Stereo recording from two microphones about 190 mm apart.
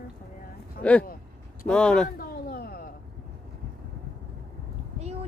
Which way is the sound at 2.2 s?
50° left (ahead or behind).